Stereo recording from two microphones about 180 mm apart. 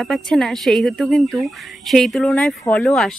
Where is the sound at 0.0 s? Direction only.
Centre (ahead or behind).